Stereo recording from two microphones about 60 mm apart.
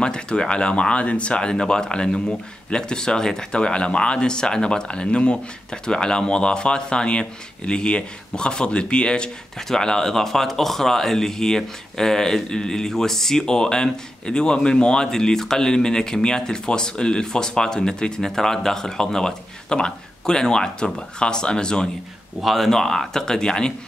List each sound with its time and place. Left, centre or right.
0.0 s speech: centre
22.4 s speech: centre